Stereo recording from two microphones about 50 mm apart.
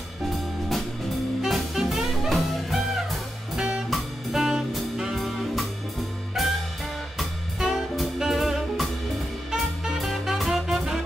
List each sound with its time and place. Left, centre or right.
1.4 s music: centre
3.5 s music: right
3.9 s music: centre
5.1 s music: centre